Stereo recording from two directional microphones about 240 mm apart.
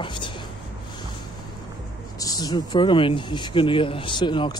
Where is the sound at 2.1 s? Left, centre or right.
Centre.